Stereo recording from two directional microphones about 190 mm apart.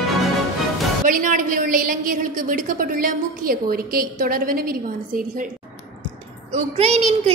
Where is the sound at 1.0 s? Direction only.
45° right (ahead or behind).